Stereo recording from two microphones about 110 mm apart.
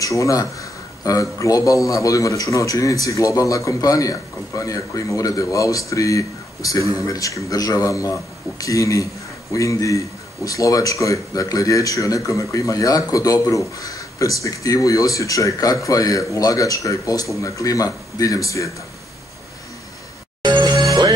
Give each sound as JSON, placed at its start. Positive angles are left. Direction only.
{"t": 0.0, "sound": "speech", "side_deg": 30}
{"t": 20.4, "sound": "music", "side_deg": -45}